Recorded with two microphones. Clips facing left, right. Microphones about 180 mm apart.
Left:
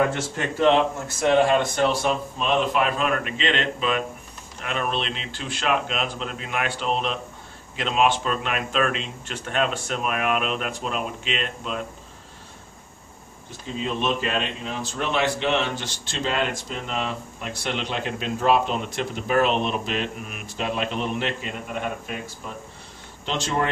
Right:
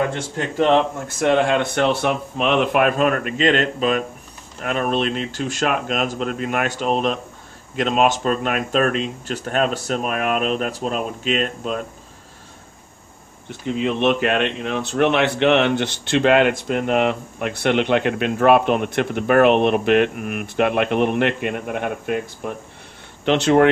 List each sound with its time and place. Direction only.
1.2 s speech: 60° right (ahead or behind); by 11.8 s 45° right (ahead or behind)
13.5 s speech: 65° right (ahead or behind)